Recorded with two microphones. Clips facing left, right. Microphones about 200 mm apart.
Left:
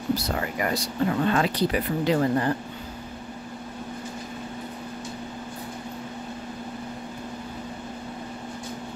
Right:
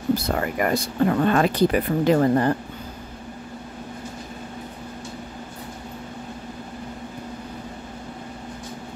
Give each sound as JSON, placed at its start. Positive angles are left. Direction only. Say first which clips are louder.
{"t": 0.1, "sound": "speech", "louder": "right 4 dB", "side_deg": -50}